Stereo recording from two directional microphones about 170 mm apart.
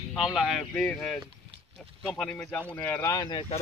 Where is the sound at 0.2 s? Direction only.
Centre (ahead or behind); by 3.4 s 25° left (ahead or behind).